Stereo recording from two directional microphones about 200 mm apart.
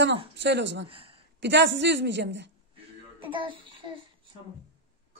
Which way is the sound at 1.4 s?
60° right (ahead or behind).